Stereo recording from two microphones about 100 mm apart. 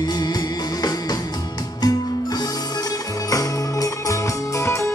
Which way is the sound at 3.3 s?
35° left (ahead or behind).